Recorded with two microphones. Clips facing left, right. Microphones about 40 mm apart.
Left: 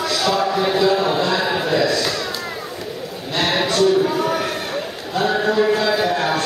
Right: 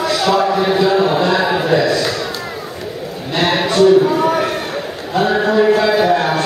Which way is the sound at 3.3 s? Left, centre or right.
Centre.